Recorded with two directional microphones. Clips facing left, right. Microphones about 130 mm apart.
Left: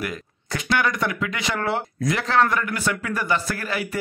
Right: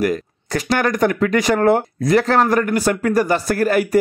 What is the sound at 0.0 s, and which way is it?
A man's voice, 40° right (ahead or behind).